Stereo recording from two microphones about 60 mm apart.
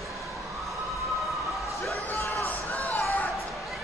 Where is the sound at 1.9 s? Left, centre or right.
Left.